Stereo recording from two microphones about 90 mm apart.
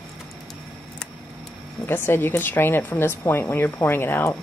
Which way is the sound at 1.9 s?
25° left (ahead or behind).